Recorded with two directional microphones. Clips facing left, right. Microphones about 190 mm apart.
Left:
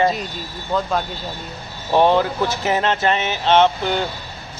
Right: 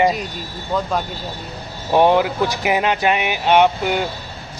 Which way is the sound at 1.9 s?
10° right (ahead or behind).